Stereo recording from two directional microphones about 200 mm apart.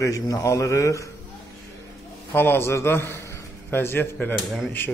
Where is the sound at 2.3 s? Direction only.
10° left (ahead or behind).